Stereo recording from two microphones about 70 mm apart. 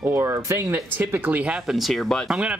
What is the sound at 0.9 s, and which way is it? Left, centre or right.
Speech, right.